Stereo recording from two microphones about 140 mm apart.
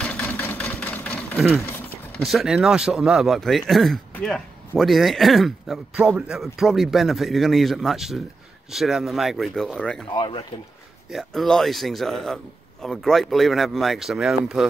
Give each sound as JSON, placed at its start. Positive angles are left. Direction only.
{"t": 0.0, "sound": "engine", "side_deg": 10}
{"t": 2.1, "sound": "speech", "side_deg": 0}
{"t": 10.0, "sound": "speech", "side_deg": 35}
{"t": 11.1, "sound": "speech", "side_deg": 0}